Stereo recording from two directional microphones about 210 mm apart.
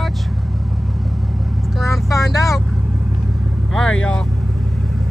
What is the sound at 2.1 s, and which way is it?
Vehicle, 15° left (ahead or behind).